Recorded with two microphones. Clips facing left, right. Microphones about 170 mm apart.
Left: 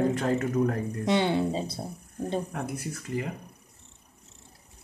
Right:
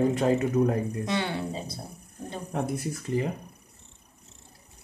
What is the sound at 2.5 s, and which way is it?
Speech, 25° right (ahead or behind).